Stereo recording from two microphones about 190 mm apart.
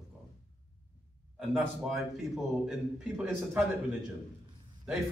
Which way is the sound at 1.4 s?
Centre (ahead or behind).